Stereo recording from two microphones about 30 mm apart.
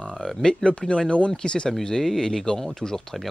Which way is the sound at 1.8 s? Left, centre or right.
Centre.